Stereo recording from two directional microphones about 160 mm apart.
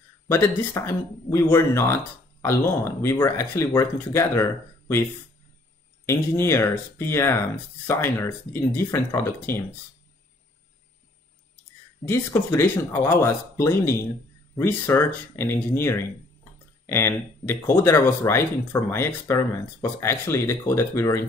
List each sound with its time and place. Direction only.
0.3 s speech: 15° left (ahead or behind)
6.0 s speech: 15° left (ahead or behind)
12.1 s speech: 15° left (ahead or behind)